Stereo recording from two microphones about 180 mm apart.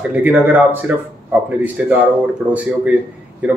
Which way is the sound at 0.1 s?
10° right (ahead or behind).